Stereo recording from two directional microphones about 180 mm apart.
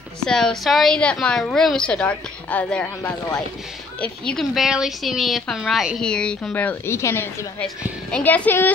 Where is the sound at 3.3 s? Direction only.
5° left (ahead or behind).